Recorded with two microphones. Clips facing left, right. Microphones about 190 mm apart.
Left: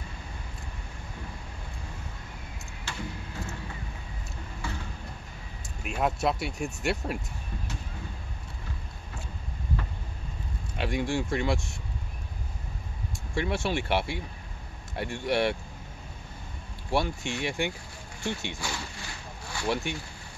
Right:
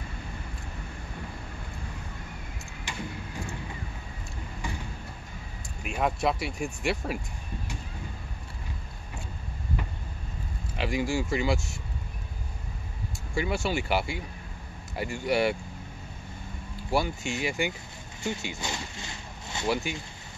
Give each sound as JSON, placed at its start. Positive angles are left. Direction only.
{"t": 2.8, "sound": "vehicle", "side_deg": -15}
{"t": 4.6, "sound": "a sound", "side_deg": -15}
{"t": 5.8, "sound": "speech", "side_deg": 0}
{"t": 10.8, "sound": "speech", "side_deg": 0}
{"t": 13.3, "sound": "speech", "side_deg": 0}
{"t": 16.9, "sound": "speech", "side_deg": 0}
{"t": 18.6, "sound": "a sound", "side_deg": -20}
{"t": 19.7, "sound": "speech", "side_deg": 0}